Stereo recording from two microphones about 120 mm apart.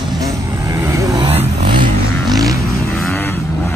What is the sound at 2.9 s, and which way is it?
Vehicle, 15° left (ahead or behind).